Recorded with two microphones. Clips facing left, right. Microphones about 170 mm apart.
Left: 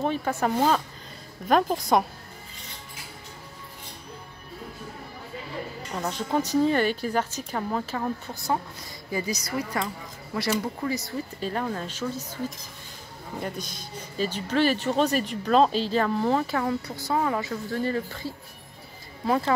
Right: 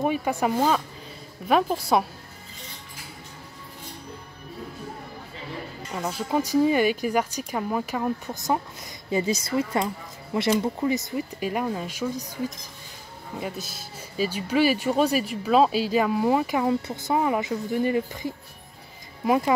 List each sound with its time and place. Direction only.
0.0 s speech: 10° right (ahead or behind)
5.9 s speech: 5° right (ahead or behind)
9.1 s a woman's voice: 25° right (ahead or behind)
13.4 s speech: 5° right (ahead or behind)